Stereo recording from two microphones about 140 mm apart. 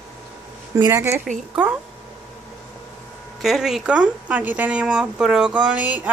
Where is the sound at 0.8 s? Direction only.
20° right (ahead or behind).